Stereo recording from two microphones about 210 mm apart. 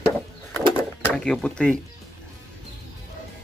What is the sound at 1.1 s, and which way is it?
Speech, centre (ahead or behind).